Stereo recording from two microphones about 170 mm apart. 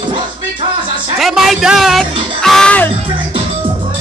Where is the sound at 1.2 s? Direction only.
Centre (ahead or behind).